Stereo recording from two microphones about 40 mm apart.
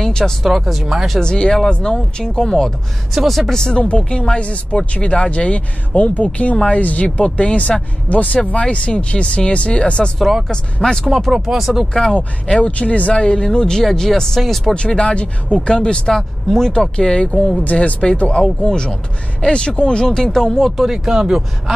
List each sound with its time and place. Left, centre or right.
0.0 s speech: centre
0.5 s speech: centre
1.2 s speech: left
3.1 s speech: centre
3.5 s speech: left
7.2 s speech: left
8.1 s speech: left; by 11.1 s centre
11.2 s speech: centre
12.5 s speech: left; by 14.7 s centre
14.7 s speech: left
16.2 s speech: centre
16.7 s speech: centre
20.8 s speech: centre